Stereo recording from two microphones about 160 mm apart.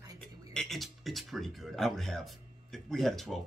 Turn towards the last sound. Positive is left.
turn(degrees=0)  # may be behind; listen again after turning